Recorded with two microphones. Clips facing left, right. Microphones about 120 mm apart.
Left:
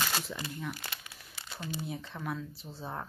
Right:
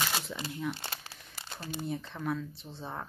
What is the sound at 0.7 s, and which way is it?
Speech, 30° right (ahead or behind).